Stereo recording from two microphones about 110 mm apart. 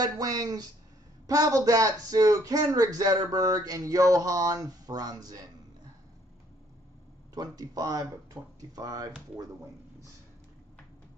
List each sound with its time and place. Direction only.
0.0 s speech: 35° right (ahead or behind)
7.3 s speech: 35° right (ahead or behind)